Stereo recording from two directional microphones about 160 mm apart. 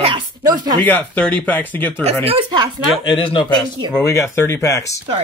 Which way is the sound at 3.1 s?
30° left (ahead or behind).